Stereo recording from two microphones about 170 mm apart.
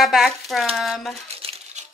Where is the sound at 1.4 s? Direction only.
35° right (ahead or behind).